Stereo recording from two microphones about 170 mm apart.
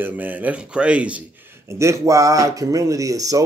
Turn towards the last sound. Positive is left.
turn(degrees=-20)  # may be behind; listen again after turning